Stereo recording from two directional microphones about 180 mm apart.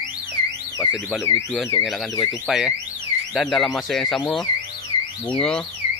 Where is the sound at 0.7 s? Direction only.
15° left (ahead or behind).